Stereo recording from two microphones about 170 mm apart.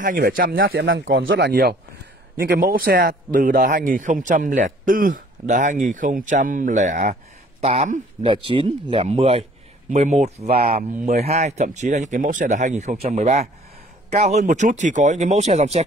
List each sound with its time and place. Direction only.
0.0 s a man's voice: 55° right (ahead or behind)
10.5 s a man's voice: 55° right (ahead or behind)